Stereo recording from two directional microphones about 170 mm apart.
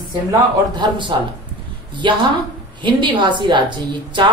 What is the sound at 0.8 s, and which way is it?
A woman's voice, 30° right (ahead or behind).